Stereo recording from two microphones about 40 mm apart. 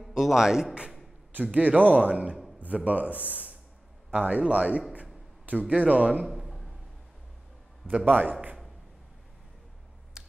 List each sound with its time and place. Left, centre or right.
0.0 s a man's voice: centre
1.3 s speech: right
6.4 s a sound: centre
8.0 s a man's voice: right